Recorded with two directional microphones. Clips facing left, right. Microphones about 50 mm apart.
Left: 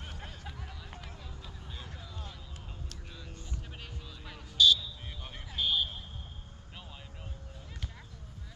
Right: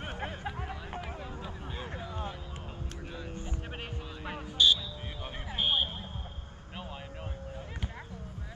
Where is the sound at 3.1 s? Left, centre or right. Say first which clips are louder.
Right 8 dB; right.